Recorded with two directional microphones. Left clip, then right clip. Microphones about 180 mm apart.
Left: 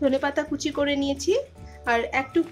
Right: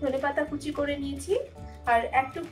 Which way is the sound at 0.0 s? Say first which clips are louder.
Left 4 dB; 65° left (ahead or behind).